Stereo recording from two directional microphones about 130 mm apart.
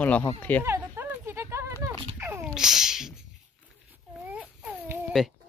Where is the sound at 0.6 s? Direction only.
15° right (ahead or behind).